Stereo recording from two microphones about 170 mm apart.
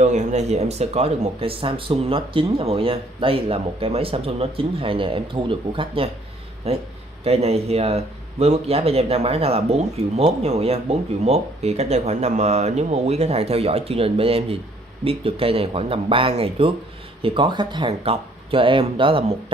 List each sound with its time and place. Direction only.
0.0 s speech: 45° right (ahead or behind)